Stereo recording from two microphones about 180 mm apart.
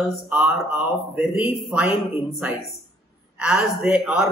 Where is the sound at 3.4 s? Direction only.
5° right (ahead or behind).